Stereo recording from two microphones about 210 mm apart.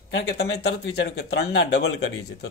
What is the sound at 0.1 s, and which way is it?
Speech, 50° left (ahead or behind).